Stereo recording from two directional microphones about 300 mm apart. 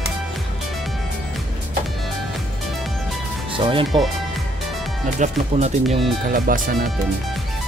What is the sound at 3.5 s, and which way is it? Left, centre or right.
Music, centre.